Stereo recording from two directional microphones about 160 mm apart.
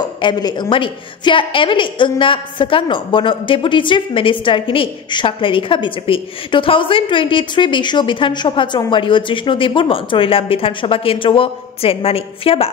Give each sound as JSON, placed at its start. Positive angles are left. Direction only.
{"t": 0.2, "sound": "a woman's voice", "side_deg": 25}